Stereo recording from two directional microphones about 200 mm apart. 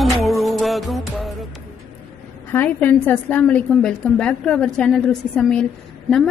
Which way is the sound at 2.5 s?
10° left (ahead or behind).